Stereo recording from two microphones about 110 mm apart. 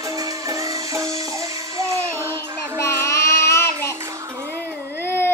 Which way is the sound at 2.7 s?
25° left (ahead or behind).